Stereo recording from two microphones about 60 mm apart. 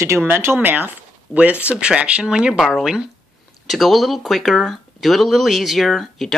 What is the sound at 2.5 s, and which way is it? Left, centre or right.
Speech, centre.